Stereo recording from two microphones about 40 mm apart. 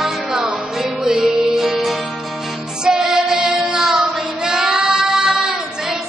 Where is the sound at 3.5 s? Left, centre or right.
Centre.